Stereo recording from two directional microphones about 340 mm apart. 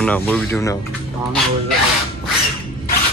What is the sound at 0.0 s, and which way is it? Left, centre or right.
Speech, centre.